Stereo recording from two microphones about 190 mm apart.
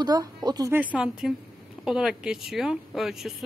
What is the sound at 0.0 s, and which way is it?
Speech, 20° right (ahead or behind).